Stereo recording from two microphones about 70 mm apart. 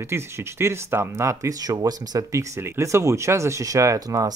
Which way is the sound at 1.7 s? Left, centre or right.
Right.